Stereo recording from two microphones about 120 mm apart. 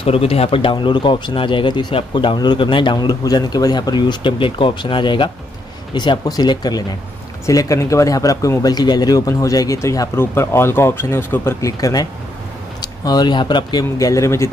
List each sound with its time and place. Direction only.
0.0 s speech: 55° left (ahead or behind); by 14.5 s 25° left (ahead or behind)